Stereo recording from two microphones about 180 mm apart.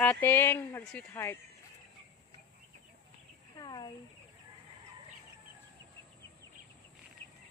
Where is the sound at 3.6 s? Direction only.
25° left (ahead or behind).